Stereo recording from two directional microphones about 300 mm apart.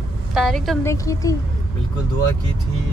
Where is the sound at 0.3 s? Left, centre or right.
Centre.